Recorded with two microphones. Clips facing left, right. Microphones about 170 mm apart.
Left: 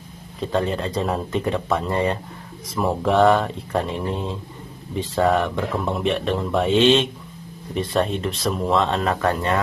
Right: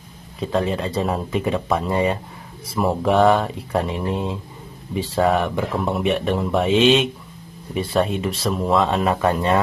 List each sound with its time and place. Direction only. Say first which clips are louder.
0.4 s speech: right 1 dB; centre (ahead or behind)
9.1 s speech: right 3 dB; 15° right (ahead or behind)